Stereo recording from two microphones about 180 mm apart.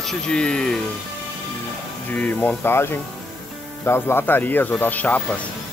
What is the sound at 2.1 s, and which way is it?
Speech, 10° left (ahead or behind).